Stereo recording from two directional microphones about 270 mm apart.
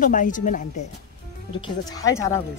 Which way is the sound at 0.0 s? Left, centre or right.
Left.